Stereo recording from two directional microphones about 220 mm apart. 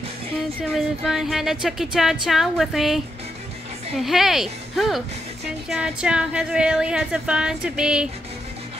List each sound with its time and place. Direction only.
0.7 s a woman's voice: centre (ahead or behind)